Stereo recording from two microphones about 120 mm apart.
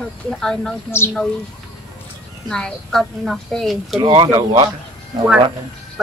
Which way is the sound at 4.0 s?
40° right (ahead or behind).